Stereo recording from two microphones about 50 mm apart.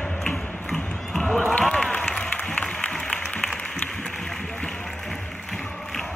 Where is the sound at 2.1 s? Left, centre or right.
Centre.